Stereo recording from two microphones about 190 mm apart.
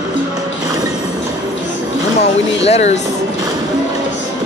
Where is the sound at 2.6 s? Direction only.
35° left (ahead or behind).